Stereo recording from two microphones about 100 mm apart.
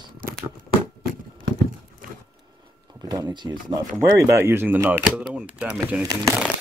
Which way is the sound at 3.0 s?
45° right (ahead or behind).